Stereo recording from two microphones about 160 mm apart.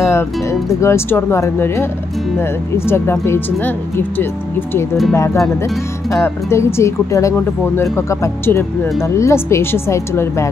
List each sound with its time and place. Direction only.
0.0 s speech: 20° left (ahead or behind)
2.9 s speech: 15° left (ahead or behind)